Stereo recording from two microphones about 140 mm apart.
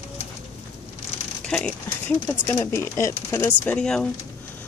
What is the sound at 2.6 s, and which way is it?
Speech, 20° left (ahead or behind).